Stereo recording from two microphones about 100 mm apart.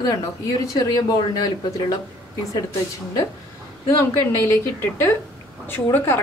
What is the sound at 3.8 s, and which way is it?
Speech, 30° left (ahead or behind).